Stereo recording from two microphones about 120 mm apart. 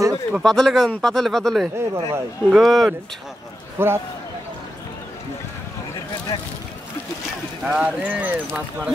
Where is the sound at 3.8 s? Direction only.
20° right (ahead or behind).